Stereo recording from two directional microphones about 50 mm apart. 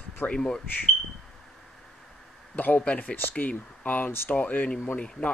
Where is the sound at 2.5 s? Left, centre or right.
Left.